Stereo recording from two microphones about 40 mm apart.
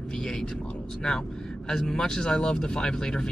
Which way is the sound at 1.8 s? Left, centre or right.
Centre.